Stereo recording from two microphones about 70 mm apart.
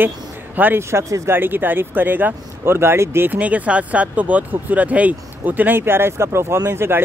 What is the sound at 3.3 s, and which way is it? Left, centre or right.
Speech, right.